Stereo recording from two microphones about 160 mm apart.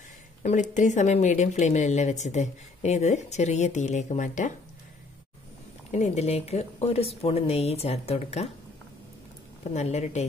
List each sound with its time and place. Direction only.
0.4 s speech: 50° left (ahead or behind)
5.9 s speech: 45° left (ahead or behind)
9.8 s speech: 45° left (ahead or behind)